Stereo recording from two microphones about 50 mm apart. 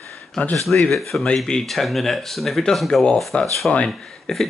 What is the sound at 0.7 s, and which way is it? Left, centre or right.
Speech, centre.